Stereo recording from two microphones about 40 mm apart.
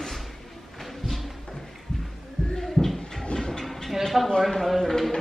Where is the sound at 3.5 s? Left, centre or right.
Centre.